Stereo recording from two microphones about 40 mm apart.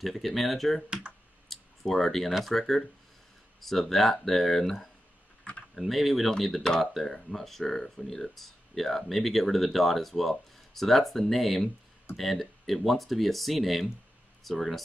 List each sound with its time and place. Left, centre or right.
0.0 s speech: centre
1.5 s a sound: centre
2.4 s speech: centre
5.8 s speech: centre